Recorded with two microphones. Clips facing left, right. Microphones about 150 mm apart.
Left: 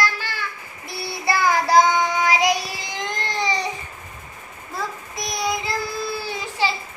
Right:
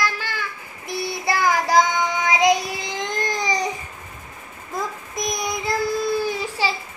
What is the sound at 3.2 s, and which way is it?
Baby cry, 10° right (ahead or behind).